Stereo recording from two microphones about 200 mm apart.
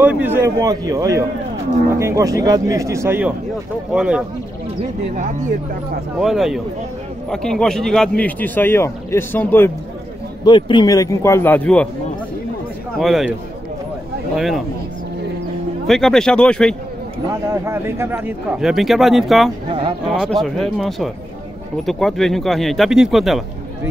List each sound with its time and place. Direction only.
0.0 s speech: 10° right (ahead or behind)
5.1 s speech: 40° right (ahead or behind)
6.1 s a man's voice: centre (ahead or behind)
10.4 s a man's voice: 20° left (ahead or behind); by 11.9 s 5° left (ahead or behind)
13.0 s speech: centre (ahead or behind)
14.3 s speech: centre (ahead or behind)
15.9 s speech: centre (ahead or behind)
17.3 s speech: 15° right (ahead or behind)